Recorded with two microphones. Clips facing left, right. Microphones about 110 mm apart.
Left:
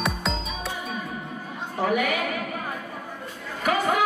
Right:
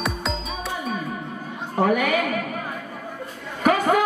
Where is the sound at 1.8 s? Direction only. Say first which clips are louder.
Right 4 dB; 45° right (ahead or behind).